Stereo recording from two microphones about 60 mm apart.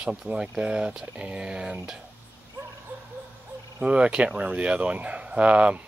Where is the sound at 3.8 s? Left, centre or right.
Centre.